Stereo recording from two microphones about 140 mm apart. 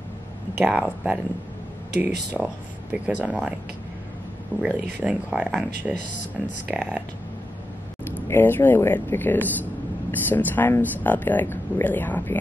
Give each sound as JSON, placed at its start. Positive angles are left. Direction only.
{"t": 0.6, "sound": "speech", "side_deg": -10}
{"t": 4.6, "sound": "speech", "side_deg": -10}
{"t": 8.3, "sound": "speech", "side_deg": 15}